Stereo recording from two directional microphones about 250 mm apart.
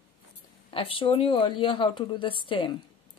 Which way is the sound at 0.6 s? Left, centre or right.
Left.